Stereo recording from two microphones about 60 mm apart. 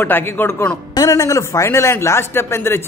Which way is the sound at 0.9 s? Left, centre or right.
Left.